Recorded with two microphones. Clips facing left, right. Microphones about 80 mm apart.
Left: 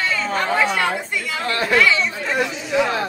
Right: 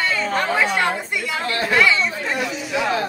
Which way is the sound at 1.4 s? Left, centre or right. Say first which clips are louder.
Left 2 dB; left.